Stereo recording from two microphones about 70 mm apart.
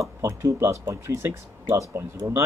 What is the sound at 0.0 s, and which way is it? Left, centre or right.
Speech, right.